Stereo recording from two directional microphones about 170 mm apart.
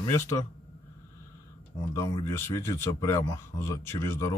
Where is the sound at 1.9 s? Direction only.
20° left (ahead or behind).